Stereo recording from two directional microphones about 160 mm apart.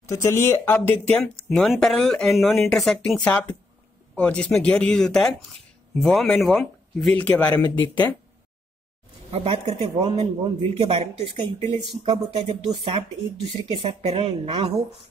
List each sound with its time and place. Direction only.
0.1 s speech: 15° left (ahead or behind)
9.3 s speech: 35° right (ahead or behind)